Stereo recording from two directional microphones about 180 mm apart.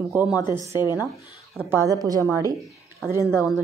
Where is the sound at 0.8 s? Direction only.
20° left (ahead or behind).